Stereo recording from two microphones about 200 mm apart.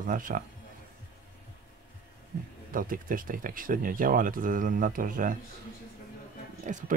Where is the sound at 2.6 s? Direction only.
45° right (ahead or behind).